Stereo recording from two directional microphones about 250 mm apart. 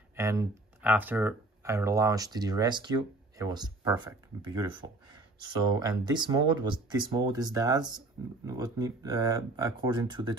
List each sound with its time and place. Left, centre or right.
0.1 s speech: centre
5.8 s speech: centre